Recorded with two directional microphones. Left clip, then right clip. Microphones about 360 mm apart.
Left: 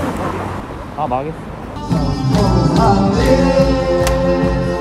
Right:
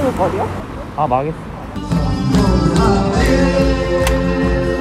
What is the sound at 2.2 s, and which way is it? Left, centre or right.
Music, left.